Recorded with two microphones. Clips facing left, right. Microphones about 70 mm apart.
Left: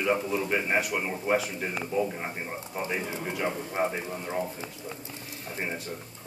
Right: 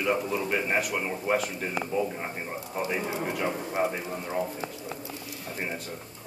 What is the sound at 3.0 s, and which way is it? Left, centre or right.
Speech, right.